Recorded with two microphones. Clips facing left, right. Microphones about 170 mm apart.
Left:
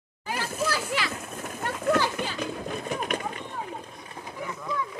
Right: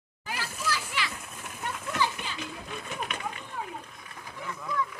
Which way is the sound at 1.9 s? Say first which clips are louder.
Left 5 dB; 50° left (ahead or behind).